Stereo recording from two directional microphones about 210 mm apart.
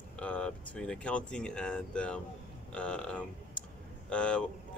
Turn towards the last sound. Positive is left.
turn(degrees=5)  # may be behind; listen again after turning